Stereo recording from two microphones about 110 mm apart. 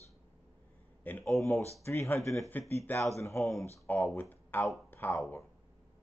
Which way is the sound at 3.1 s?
25° left (ahead or behind).